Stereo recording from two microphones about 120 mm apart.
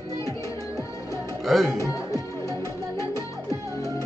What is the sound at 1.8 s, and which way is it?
Music, 30° left (ahead or behind).